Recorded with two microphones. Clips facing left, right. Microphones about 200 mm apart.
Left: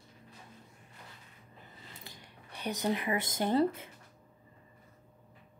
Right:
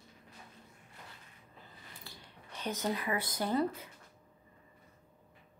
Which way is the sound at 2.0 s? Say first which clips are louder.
Left 1 dB; 15° left (ahead or behind).